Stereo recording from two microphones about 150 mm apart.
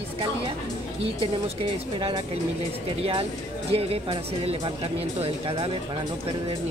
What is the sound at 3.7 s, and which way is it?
Speech, 40° right (ahead or behind).